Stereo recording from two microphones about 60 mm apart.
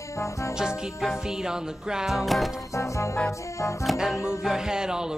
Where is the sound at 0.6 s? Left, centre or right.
Centre.